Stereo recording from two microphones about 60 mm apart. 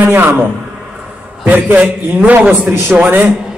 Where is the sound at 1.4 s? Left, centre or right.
Right.